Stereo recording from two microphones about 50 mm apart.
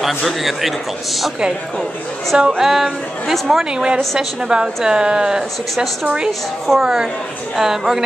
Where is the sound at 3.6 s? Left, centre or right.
Centre.